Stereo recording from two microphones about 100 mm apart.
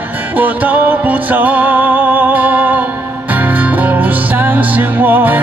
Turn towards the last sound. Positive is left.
turn(degrees=-20)  # may be behind; listen again after turning